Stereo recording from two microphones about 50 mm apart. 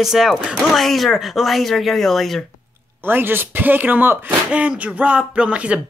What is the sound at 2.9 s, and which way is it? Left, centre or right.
Speech, right.